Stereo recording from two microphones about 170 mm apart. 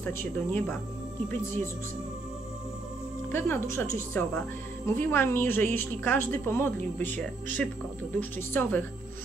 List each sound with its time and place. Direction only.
0.0 s a woman's voice: 10° left (ahead or behind)
3.3 s a woman's voice: 15° left (ahead or behind)